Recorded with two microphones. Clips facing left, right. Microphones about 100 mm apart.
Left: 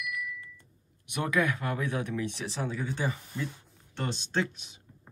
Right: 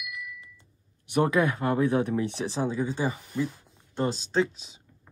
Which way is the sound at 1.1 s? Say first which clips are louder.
Right 5 dB; 35° right (ahead or behind).